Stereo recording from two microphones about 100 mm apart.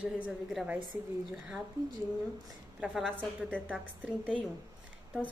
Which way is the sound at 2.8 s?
Centre (ahead or behind).